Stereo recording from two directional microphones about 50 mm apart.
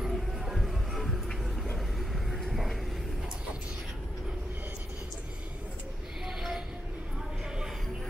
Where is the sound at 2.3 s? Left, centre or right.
Centre.